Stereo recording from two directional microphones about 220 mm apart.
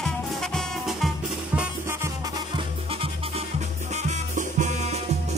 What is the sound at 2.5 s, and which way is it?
Music, 25° right (ahead or behind).